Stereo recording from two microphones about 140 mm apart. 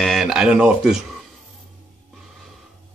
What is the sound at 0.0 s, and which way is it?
Speech, centre (ahead or behind).